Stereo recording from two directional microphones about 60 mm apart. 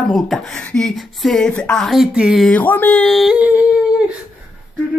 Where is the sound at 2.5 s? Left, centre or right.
Left.